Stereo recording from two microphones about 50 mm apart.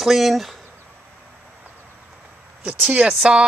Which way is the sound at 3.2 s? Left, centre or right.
Centre.